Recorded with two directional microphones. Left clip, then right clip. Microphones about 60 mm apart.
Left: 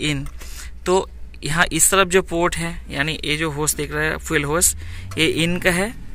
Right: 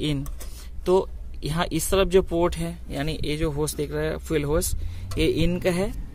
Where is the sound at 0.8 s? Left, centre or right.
Right.